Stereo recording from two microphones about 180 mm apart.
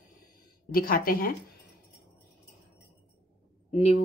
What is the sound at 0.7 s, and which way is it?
Speech, 55° left (ahead or behind).